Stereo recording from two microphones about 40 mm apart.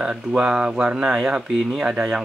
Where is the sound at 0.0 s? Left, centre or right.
Right.